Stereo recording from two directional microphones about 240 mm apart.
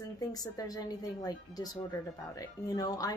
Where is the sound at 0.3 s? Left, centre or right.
Centre.